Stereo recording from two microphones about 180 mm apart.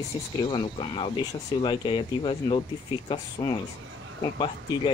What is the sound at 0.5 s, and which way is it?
Speech, 30° left (ahead or behind).